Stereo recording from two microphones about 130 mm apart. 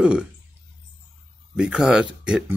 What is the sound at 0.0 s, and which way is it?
Speech, 10° right (ahead or behind).